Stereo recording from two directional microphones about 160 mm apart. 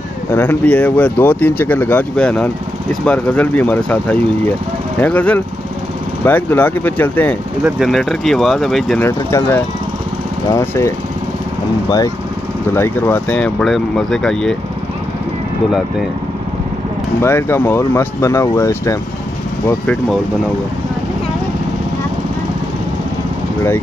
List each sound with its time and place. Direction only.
0.3 s speech: 10° left (ahead or behind)
9.0 s speech: 15° left (ahead or behind)
12.7 s speech: 15° left (ahead or behind)
17.2 s speech: 15° left (ahead or behind)